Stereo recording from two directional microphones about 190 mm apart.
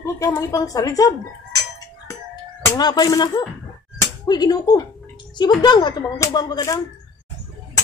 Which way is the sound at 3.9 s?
20° left (ahead or behind).